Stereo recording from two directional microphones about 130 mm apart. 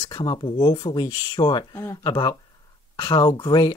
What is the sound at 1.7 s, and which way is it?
Speech, 25° left (ahead or behind).